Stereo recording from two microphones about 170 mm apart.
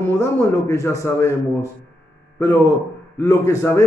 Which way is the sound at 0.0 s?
15° left (ahead or behind).